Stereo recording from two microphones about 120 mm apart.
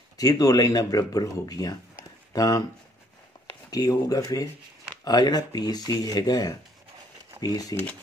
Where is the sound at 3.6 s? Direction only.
30° left (ahead or behind).